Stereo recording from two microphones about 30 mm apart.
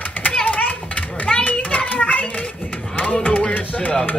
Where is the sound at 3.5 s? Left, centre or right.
Left.